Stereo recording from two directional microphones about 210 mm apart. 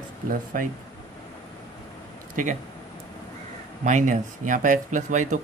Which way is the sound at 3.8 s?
35° right (ahead or behind).